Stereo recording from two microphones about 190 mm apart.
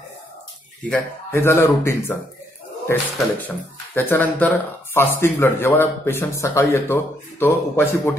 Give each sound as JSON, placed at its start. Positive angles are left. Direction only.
{"t": 0.8, "sound": "speech", "side_deg": 10}
{"t": 3.2, "sound": "speech", "side_deg": 10}